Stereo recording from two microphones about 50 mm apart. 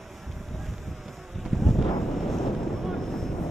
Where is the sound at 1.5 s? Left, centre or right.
Centre.